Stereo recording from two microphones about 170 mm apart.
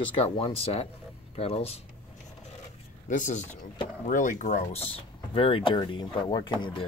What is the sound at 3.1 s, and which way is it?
Speech, 45° left (ahead or behind).